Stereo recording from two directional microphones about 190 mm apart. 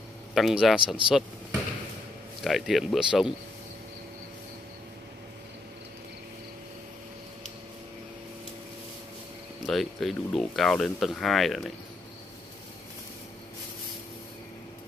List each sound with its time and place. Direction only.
0.3 s speech: centre (ahead or behind)
9.7 s speech: centre (ahead or behind)